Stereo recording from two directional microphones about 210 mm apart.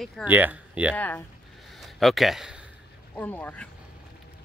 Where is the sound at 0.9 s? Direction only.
10° left (ahead or behind).